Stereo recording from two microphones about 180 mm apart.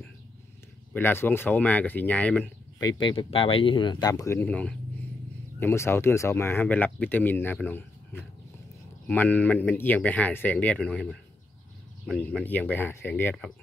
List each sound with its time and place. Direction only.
0.9 s speech: 10° left (ahead or behind)
2.8 s speech: 25° left (ahead or behind); by 13.5 s 10° left (ahead or behind)